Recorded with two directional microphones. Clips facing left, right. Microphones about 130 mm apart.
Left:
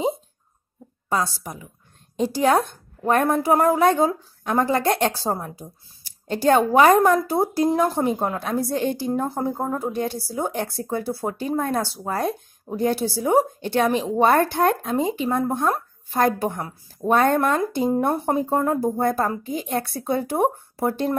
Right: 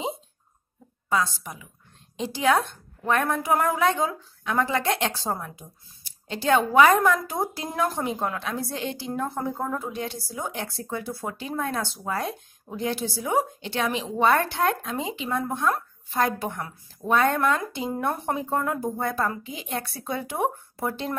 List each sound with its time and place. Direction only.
1.0 s a woman's voice: 40° left (ahead or behind)
9.2 s a woman's voice: 30° left (ahead or behind)
17.9 s a woman's voice: 35° left (ahead or behind)